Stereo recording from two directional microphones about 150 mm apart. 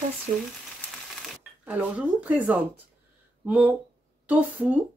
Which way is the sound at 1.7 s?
10° right (ahead or behind).